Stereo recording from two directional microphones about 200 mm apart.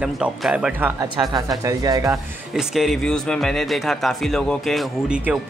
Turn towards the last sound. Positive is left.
turn(degrees=-5)  # may be behind; listen again after turning